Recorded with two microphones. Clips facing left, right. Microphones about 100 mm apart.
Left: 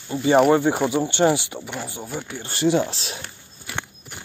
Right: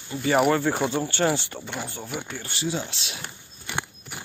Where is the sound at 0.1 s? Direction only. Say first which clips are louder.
Left 5 dB; 25° left (ahead or behind).